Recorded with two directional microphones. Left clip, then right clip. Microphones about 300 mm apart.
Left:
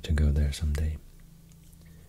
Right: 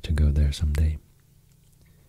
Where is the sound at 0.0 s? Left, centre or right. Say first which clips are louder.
Right 2 dB; centre.